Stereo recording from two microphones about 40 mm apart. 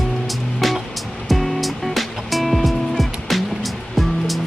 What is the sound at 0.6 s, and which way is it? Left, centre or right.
Music, centre.